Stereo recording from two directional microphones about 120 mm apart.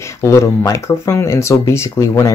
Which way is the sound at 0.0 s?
25° left (ahead or behind).